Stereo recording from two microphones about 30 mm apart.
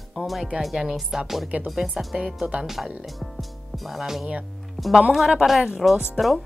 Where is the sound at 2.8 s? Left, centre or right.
Centre.